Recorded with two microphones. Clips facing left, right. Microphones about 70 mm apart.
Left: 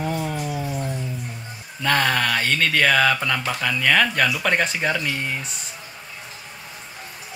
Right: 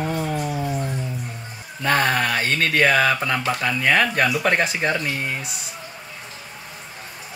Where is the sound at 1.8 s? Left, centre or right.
Centre.